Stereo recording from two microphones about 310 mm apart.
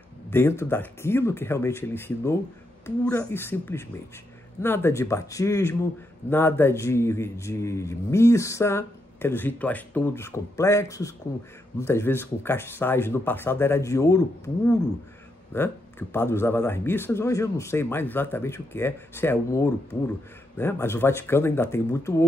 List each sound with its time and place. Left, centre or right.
0.3 s a man's voice: centre